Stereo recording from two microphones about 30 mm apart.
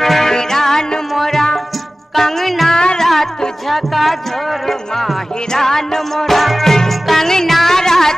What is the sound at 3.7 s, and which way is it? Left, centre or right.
Music, centre.